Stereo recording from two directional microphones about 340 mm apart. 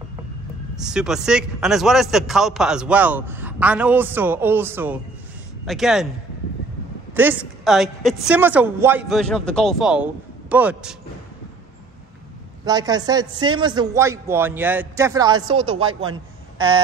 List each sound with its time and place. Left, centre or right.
0.7 s speech: centre
7.2 s speech: centre
12.6 s a man's voice: centre
16.5 s a sound: centre